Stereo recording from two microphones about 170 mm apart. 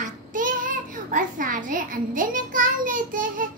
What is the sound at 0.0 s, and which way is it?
Child singing, 50° right (ahead or behind).